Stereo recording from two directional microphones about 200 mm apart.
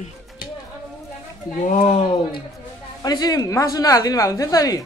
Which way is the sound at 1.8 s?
25° left (ahead or behind).